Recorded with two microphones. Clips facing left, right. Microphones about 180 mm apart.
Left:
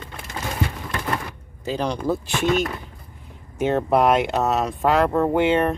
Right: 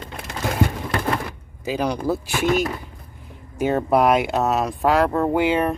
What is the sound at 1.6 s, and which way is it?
Speech, 10° right (ahead or behind).